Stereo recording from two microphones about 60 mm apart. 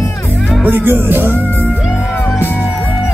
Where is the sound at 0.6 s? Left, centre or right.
Right.